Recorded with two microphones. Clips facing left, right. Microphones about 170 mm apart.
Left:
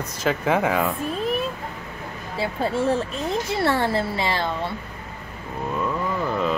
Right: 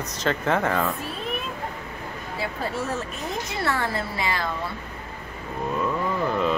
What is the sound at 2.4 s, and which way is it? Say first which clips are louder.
Speech: left 6 dB; 30° left (ahead or behind).